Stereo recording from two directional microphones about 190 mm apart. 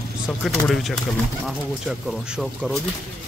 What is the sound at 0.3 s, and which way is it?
Speech, centre (ahead or behind).